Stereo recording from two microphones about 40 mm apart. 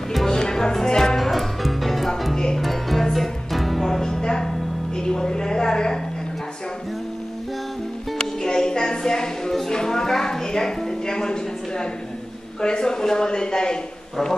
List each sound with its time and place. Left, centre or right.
0.1 s music: centre
2.3 s music: centre
2.6 s music: centre
4.9 s a sound: centre
8.2 s music: centre
9.7 s a sound: centre
12.6 s speech: centre